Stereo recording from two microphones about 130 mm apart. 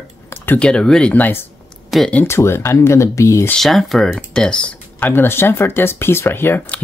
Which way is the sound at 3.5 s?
Centre (ahead or behind).